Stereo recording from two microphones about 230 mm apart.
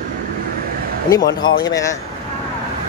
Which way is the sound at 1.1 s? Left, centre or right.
Centre.